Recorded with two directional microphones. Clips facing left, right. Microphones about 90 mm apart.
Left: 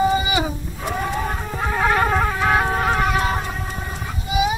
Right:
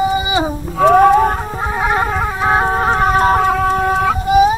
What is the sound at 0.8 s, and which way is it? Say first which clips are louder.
Music: right 16 dB; 65° right (ahead or behind).